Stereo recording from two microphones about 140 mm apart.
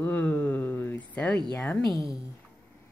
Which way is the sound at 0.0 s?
10° left (ahead or behind).